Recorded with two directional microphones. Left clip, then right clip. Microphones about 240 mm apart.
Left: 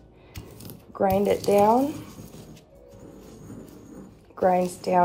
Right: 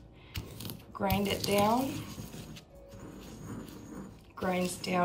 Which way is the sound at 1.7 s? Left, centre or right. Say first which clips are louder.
Left 9 dB; right.